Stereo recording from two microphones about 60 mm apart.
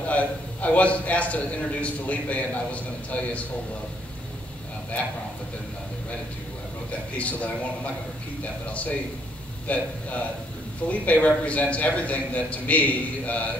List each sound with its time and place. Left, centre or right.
0.1 s a man's voice: left
6.9 s a man's voice: left
9.7 s a man's voice: left
10.9 s a man's voice: left